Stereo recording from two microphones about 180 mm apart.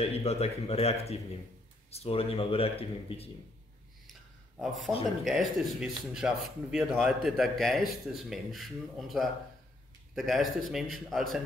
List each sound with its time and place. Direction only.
0.0 s speech: 35° left (ahead or behind)
4.1 s a sound: centre (ahead or behind)
5.0 s speech: centre (ahead or behind)